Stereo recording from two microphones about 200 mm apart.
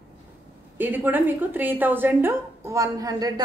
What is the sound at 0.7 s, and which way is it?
A woman's voice, 10° right (ahead or behind).